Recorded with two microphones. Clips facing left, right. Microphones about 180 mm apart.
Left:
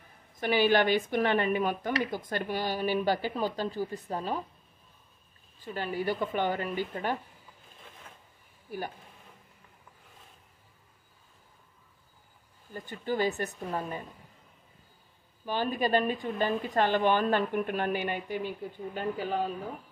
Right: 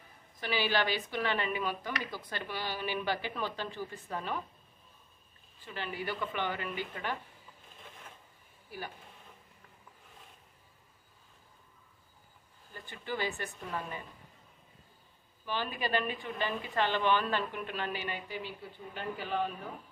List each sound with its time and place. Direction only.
0.4 s a woman's voice: 50° left (ahead or behind)
5.6 s a woman's voice: 40° left (ahead or behind)
8.6 s speech: 45° left (ahead or behind)
12.7 s a woman's voice: 40° left (ahead or behind)
15.4 s speech: 40° left (ahead or behind)